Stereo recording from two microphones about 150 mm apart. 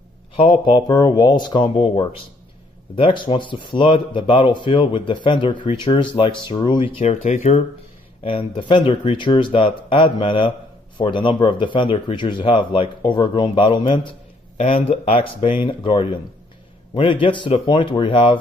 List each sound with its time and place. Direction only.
0.4 s speech: 35° left (ahead or behind)
8.2 s speech: 35° left (ahead or behind)